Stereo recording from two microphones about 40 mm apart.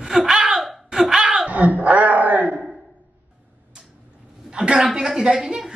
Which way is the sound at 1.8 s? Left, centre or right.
Right.